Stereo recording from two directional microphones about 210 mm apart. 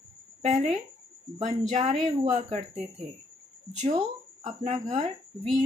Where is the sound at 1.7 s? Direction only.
30° right (ahead or behind).